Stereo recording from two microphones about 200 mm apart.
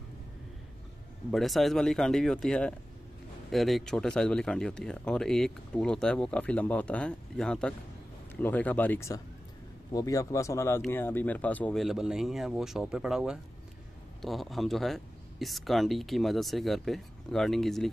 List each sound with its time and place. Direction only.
1.3 s speech: centre (ahead or behind)